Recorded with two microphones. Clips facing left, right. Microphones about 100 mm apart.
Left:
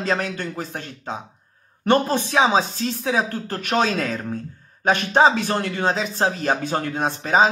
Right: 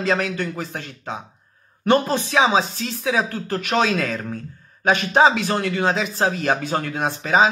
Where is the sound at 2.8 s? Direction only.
35° left (ahead or behind).